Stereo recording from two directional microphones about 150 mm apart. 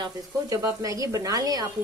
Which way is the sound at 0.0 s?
20° right (ahead or behind).